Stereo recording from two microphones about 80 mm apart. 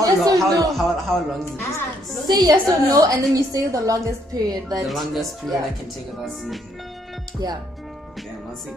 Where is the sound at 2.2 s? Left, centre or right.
Right.